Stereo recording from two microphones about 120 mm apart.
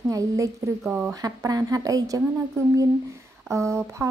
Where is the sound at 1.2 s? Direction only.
30° right (ahead or behind).